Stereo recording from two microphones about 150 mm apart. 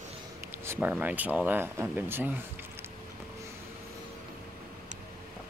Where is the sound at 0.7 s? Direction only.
10° right (ahead or behind).